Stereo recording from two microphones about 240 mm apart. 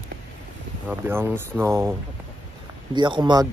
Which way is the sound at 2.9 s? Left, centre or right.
Centre.